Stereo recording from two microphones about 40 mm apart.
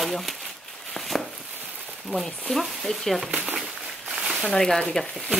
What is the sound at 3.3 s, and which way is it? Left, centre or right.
Speech, right.